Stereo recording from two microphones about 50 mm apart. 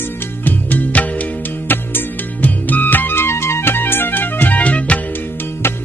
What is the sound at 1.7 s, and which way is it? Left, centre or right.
Music, left.